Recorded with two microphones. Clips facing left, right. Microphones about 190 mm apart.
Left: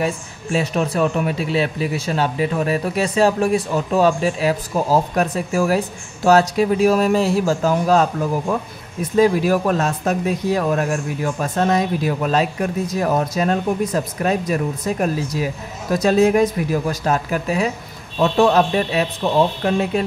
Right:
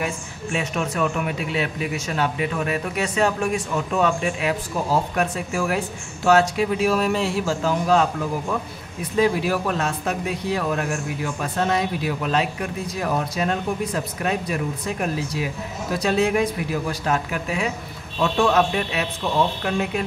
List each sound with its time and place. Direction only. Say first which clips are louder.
0.0 s speech: left 5 dB; 35° left (ahead or behind)
9.1 s speech: left 5 dB; 40° left (ahead or behind)